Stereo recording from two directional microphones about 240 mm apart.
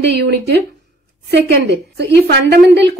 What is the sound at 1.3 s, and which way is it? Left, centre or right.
Speech, right.